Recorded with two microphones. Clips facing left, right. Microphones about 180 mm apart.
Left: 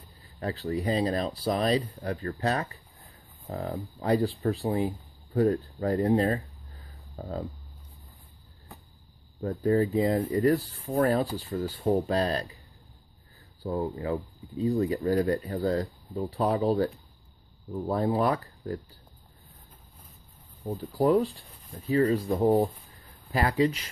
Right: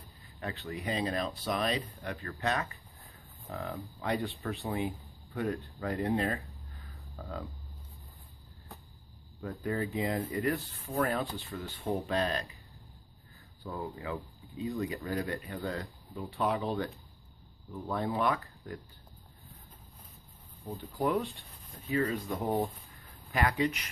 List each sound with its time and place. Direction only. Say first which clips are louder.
0.4 s speech: left 8 dB; 35° left (ahead or behind)
9.4 s speech: left 9 dB; 35° left (ahead or behind)
13.6 s speech: left 9 dB; 35° left (ahead or behind)
20.6 s speech: left 7 dB; 35° left (ahead or behind)